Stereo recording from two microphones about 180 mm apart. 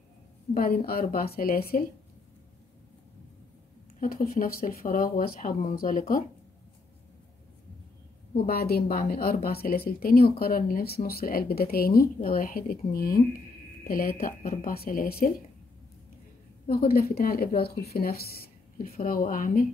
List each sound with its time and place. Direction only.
0.8 s speech: 55° left (ahead or behind)
4.0 s a woman's voice: 55° left (ahead or behind)
8.3 s speech: 55° left (ahead or behind)
16.6 s speech: 55° left (ahead or behind)